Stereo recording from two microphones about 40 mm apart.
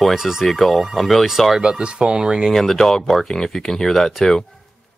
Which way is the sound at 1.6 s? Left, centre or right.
Centre.